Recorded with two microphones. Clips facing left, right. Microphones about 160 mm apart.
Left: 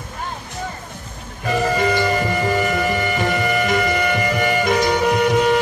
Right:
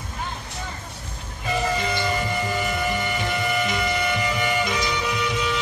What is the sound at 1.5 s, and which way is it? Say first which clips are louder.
Music: left 6 dB; 50° left (ahead or behind).